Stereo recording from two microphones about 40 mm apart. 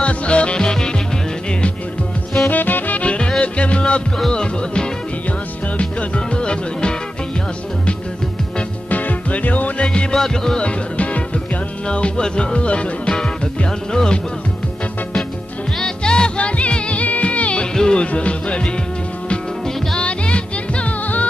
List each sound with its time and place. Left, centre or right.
0.0 s music: left
2.5 s music: left
3.0 s music: left
8.9 s music: left
10.1 s speech: centre
10.6 s music: left
12.5 s music: left
13.7 s speech: centre
15.8 s music: left
17.7 s music: centre
18.0 s music: left
20.0 s music: left